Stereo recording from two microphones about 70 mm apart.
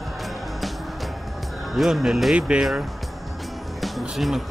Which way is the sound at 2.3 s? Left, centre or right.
Centre.